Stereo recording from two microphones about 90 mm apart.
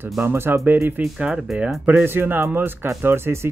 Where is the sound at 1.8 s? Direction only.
25° right (ahead or behind).